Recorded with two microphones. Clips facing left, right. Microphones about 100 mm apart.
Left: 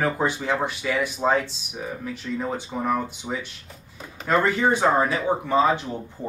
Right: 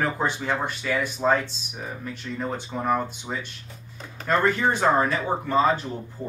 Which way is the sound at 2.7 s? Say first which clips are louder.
Left 2 dB; 15° left (ahead or behind).